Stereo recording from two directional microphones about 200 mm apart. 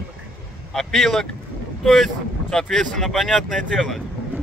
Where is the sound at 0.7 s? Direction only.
Centre (ahead or behind).